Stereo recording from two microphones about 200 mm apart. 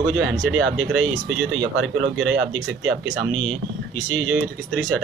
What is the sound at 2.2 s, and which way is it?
Speech, 70° right (ahead or behind).